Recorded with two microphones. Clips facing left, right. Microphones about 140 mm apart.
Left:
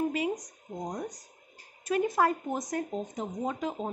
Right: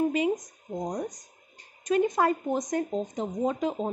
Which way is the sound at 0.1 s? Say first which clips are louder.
Right 5 dB; centre (ahead or behind).